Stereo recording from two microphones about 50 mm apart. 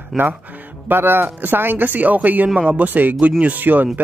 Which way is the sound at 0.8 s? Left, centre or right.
Right.